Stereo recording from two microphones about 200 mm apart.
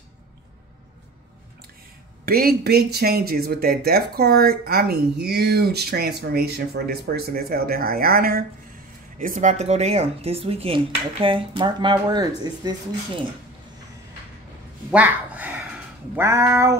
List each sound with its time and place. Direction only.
2.2 s speech: 50° right (ahead or behind); by 13.2 s 20° right (ahead or behind)
14.9 s speech: 5° right (ahead or behind)
16.2 s a sound: 15° right (ahead or behind)